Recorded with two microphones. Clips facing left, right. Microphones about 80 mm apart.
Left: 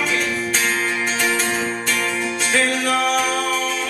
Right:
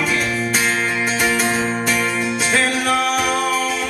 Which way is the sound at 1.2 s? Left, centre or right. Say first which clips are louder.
Right 3 dB; centre.